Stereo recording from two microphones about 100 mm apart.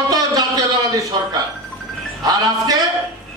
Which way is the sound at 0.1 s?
35° right (ahead or behind).